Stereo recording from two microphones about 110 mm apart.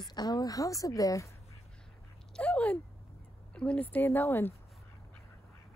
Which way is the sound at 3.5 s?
10° left (ahead or behind).